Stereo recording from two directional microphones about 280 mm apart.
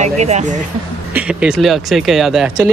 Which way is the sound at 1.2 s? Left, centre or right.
Centre.